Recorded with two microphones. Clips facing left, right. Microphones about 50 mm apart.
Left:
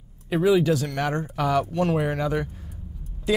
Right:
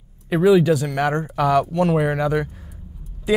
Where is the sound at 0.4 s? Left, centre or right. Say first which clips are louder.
Right 5 dB; centre.